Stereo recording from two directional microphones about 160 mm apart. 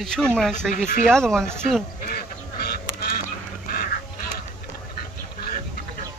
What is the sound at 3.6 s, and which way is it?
Goose, 65° left (ahead or behind).